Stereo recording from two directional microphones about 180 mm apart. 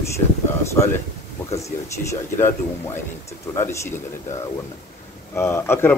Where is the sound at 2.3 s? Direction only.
15° left (ahead or behind).